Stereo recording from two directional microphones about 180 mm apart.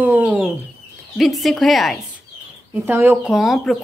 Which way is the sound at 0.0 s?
10° right (ahead or behind).